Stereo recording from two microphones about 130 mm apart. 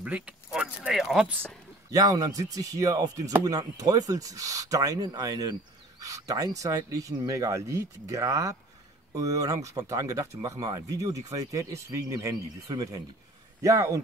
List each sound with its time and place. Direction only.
0.0 s speech: 10° right (ahead or behind)
1.9 s speech: 25° right (ahead or behind)